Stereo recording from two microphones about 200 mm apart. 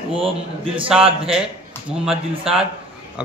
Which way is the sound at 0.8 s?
5° right (ahead or behind).